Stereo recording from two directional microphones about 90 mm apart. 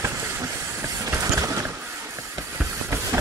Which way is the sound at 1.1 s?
35° right (ahead or behind).